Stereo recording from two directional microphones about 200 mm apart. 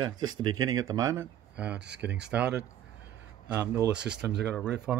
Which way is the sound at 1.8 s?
60° right (ahead or behind).